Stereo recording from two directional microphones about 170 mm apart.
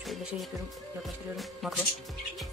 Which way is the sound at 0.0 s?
Centre (ahead or behind).